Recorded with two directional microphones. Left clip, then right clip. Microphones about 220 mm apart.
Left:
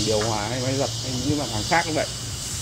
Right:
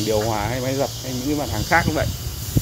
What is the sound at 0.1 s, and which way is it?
Speech, 25° right (ahead or behind).